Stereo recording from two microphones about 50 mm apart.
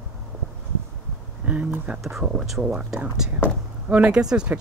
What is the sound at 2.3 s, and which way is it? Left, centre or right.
Speech, centre.